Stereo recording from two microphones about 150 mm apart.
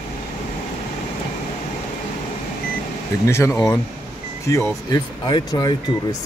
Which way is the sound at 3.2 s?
20° left (ahead or behind).